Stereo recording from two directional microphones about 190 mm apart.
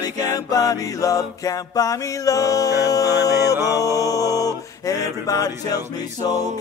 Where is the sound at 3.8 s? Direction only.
15° left (ahead or behind).